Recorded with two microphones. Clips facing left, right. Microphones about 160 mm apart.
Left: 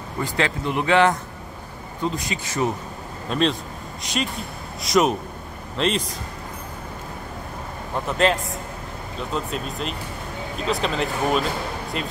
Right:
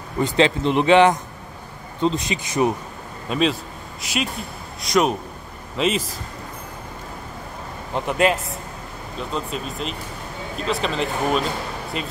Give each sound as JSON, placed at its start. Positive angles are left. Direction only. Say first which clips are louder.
{"t": 0.2, "sound": "a man's voice", "louder": "right 6 dB", "side_deg": -20}
{"t": 3.3, "sound": "a man's voice", "louder": "right 1 dB", "side_deg": -5}
{"t": 7.9, "sound": "a man's voice", "louder": "right 1 dB", "side_deg": -10}
{"t": 9.3, "sound": "speech", "louder": "left 1 dB", "side_deg": 0}